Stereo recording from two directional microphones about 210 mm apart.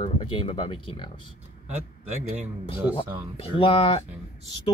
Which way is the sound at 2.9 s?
25° left (ahead or behind).